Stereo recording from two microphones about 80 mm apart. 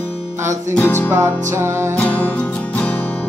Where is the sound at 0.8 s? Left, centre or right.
Left.